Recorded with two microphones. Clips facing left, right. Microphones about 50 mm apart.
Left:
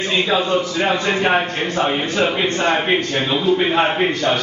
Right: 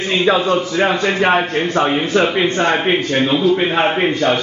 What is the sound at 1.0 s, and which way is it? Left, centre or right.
Speech, centre.